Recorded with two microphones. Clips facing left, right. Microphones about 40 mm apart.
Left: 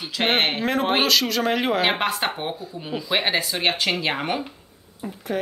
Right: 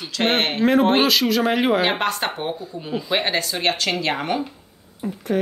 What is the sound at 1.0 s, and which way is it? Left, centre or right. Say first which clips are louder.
Speech: right 2 dB; centre.